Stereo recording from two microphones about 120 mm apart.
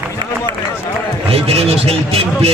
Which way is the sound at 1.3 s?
60° right (ahead or behind).